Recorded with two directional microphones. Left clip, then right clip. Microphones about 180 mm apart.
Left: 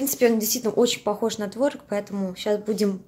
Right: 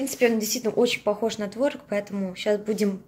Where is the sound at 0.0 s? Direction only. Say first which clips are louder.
Left 2 dB; 20° left (ahead or behind).